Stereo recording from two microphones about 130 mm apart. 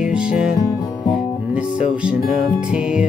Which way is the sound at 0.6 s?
30° left (ahead or behind).